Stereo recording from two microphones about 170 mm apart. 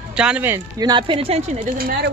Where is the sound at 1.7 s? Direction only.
60° right (ahead or behind).